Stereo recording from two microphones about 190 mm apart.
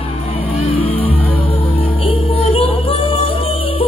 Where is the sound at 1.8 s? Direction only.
30° left (ahead or behind).